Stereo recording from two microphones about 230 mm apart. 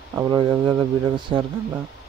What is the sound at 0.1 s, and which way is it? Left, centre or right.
Speech, centre.